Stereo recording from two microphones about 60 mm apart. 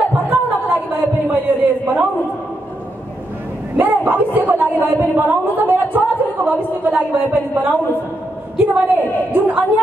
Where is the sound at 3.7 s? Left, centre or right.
Right.